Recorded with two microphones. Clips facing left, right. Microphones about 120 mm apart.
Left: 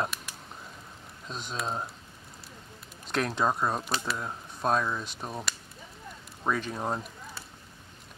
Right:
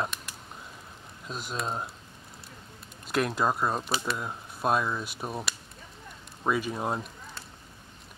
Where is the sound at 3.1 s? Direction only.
5° right (ahead or behind).